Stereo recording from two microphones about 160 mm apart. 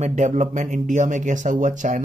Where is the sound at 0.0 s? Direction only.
45° right (ahead or behind).